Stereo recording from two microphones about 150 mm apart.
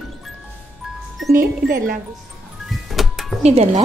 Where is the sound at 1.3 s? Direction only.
70° right (ahead or behind).